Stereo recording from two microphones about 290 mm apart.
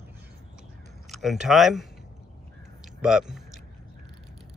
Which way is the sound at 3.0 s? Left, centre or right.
Centre.